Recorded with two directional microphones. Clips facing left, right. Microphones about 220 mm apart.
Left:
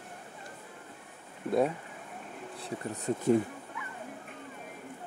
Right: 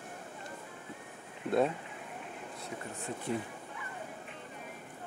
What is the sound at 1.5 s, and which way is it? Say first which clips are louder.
Speech: left 2 dB; 10° left (ahead or behind).